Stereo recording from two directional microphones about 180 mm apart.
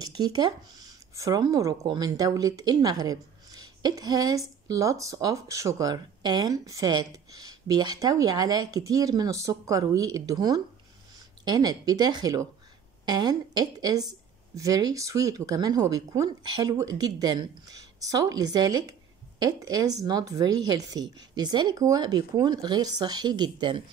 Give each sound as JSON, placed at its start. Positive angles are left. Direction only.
{"t": 0.0, "sound": "speech", "side_deg": -20}